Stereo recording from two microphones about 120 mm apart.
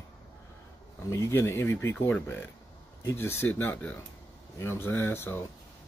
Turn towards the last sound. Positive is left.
turn(degrees=20)  # may be behind; listen again after turning